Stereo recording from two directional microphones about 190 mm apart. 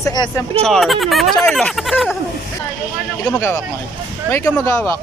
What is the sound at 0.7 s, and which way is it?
Speech, centre (ahead or behind).